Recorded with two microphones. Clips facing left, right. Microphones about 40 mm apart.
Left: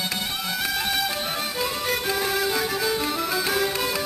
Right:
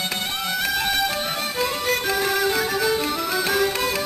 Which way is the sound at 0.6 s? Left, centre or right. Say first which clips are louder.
Right 3 dB; centre.